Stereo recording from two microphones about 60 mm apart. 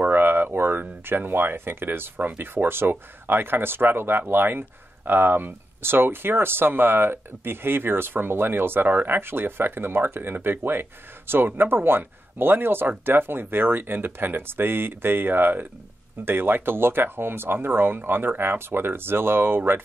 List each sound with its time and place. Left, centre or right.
0.0 s speech: right